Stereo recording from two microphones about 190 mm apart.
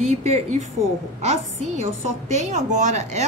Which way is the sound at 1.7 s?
35° right (ahead or behind).